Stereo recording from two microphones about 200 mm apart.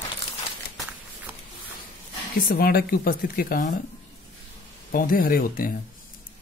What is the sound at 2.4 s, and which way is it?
Speech, 50° left (ahead or behind).